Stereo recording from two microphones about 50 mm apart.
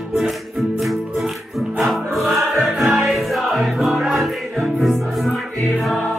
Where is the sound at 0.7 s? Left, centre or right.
Centre.